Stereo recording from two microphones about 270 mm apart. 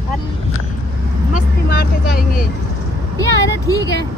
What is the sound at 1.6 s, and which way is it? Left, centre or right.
Speech, left.